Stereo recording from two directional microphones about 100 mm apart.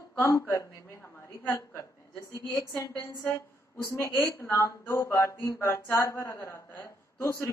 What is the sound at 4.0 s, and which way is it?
Speech, 25° left (ahead or behind).